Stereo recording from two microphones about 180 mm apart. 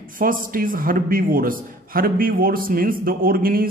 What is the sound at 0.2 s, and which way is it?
A man's voice, 50° right (ahead or behind).